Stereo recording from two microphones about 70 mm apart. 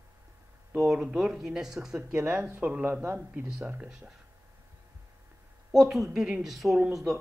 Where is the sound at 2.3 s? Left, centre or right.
Right.